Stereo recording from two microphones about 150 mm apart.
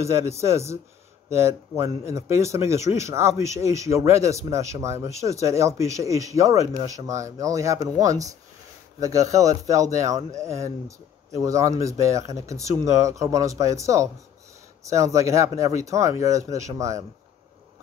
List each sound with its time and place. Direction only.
0.0 s speech: 20° right (ahead or behind)
11.4 s speech: 20° right (ahead or behind)